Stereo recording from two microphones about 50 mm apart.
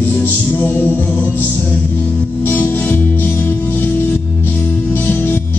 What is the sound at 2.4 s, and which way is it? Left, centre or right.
Music, left.